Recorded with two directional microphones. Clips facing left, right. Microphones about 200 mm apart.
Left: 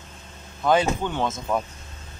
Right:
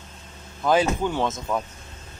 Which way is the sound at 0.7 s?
5° right (ahead or behind).